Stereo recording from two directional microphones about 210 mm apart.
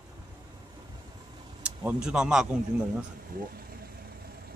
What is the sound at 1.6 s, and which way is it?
Speech, 5° right (ahead or behind).